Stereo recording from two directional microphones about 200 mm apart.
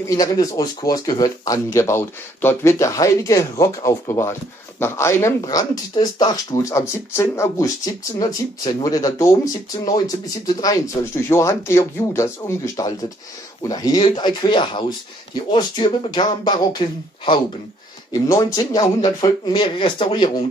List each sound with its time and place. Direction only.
0.1 s speech: 20° left (ahead or behind)
18.1 s speech: 15° left (ahead or behind)